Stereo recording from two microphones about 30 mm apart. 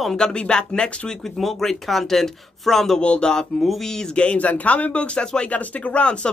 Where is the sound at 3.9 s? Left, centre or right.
Centre.